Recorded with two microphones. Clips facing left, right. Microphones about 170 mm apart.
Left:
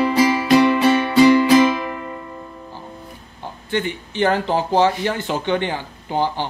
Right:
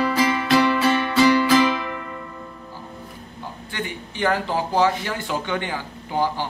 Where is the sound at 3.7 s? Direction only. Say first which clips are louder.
Left 9 dB; 30° left (ahead or behind).